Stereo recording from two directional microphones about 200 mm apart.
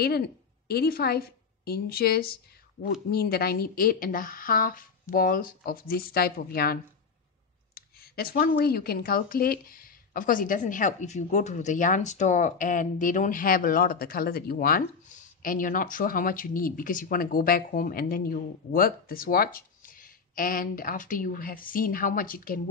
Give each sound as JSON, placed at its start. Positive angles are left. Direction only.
{"t": 0.7, "sound": "a woman's voice", "side_deg": 50}